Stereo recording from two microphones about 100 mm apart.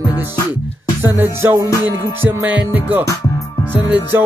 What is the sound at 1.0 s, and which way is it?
Music, 25° right (ahead or behind).